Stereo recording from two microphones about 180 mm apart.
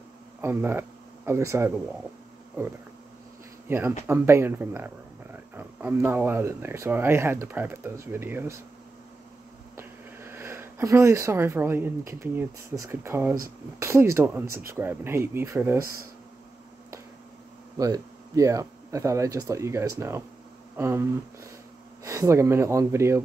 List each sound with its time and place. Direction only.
0.4 s speech: 10° right (ahead or behind)
3.6 s speech: 10° right (ahead or behind)
9.8 s speech: 15° right (ahead or behind)
17.7 s speech: 20° right (ahead or behind)
20.7 s a sound: 15° right (ahead or behind)
22.0 s speech: 15° right (ahead or behind)